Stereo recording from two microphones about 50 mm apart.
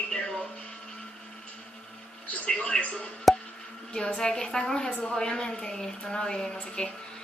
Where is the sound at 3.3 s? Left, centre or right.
Centre.